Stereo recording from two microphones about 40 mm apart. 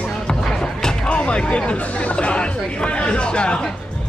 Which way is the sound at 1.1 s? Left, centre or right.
Left.